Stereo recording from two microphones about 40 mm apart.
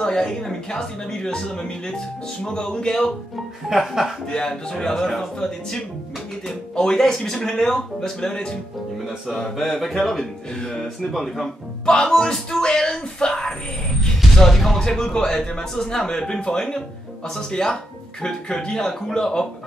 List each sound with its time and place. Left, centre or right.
0.0 s speech: centre
3.6 s speech: centre
4.3 s speech: centre
11.8 s speech: centre
14.3 s music: centre
14.8 s speech: centre